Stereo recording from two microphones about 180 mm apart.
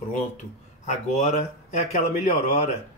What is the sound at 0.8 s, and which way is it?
Speech, 40° left (ahead or behind).